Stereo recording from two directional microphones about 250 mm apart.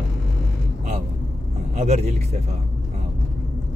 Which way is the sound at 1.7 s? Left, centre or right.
Right.